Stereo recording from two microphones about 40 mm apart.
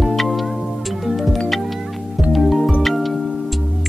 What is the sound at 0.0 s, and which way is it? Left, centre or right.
Music, centre.